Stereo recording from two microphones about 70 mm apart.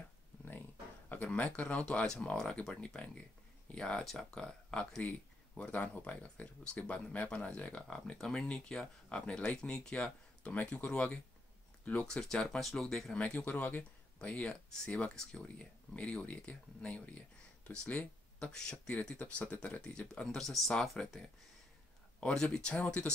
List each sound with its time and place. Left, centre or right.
0.5 s speech: left; by 13.2 s centre
13.2 s speech: centre